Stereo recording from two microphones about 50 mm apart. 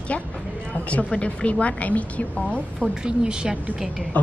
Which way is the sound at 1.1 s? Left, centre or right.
Left.